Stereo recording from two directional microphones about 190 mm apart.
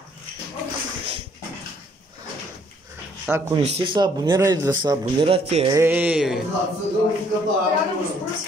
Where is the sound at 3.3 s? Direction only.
15° right (ahead or behind).